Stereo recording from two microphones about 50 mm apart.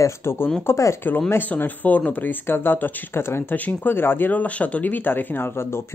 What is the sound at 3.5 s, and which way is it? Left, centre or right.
Speech, left.